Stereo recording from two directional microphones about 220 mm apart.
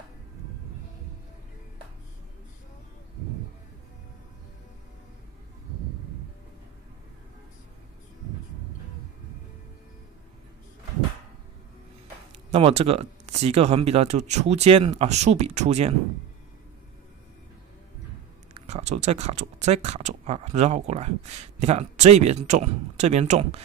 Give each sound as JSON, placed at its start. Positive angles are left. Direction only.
{"t": 12.4, "sound": "speech", "side_deg": -25}
{"t": 18.5, "sound": "speech", "side_deg": -30}